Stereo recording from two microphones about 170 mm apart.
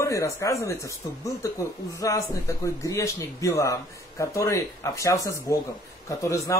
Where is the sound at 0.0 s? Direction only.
20° left (ahead or behind).